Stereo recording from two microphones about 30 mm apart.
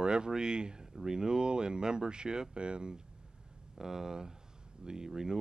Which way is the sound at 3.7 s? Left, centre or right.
Centre.